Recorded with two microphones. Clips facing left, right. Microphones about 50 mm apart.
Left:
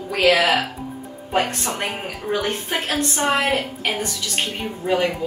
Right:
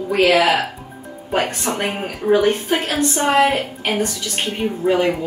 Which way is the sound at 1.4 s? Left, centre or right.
Centre.